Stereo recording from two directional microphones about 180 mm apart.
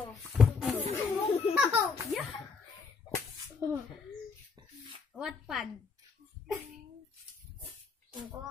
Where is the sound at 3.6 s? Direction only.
20° right (ahead or behind).